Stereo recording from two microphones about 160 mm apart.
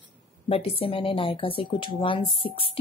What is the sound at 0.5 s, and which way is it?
Speech, 35° left (ahead or behind).